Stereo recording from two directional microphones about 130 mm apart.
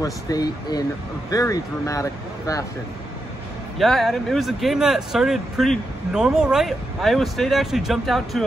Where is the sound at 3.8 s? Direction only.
Centre (ahead or behind).